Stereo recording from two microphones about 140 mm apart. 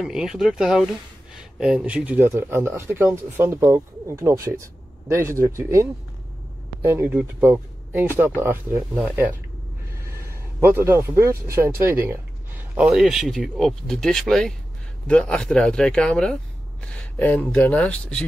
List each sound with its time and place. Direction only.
0.0 s speech: 5° right (ahead or behind)
10.6 s speech: 15° right (ahead or behind)
11.8 s a sound: 15° right (ahead or behind)
12.8 s speech: centre (ahead or behind)